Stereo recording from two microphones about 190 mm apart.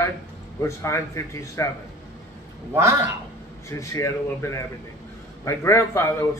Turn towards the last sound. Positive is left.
turn(degrees=15)  # may be behind; listen again after turning